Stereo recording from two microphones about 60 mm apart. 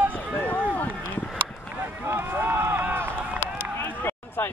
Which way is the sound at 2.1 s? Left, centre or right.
Right.